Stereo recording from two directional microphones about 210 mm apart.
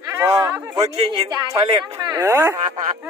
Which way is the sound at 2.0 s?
15° right (ahead or behind).